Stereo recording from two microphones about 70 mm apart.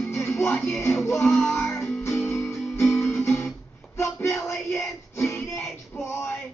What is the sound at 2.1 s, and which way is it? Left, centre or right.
Music, left.